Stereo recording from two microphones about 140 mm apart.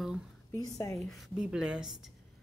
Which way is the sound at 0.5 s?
25° left (ahead or behind).